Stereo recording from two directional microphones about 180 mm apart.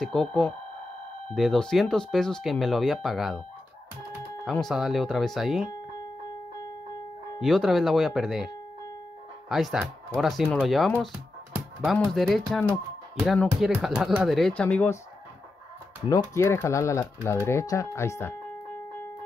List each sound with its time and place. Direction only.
0.0 s speech: 5° left (ahead or behind)
4.5 s speech: centre (ahead or behind)
7.3 s speech: centre (ahead or behind)
9.5 s speech: centre (ahead or behind)
11.5 s music: centre (ahead or behind)
12.1 s speech: centre (ahead or behind)
16.1 s speech: 20° left (ahead or behind)